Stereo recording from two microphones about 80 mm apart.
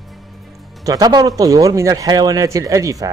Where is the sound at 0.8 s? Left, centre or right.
Right.